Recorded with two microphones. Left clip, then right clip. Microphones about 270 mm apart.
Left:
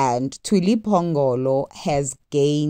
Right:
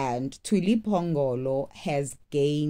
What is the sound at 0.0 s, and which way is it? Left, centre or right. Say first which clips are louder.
Speech: left 9 dB; left.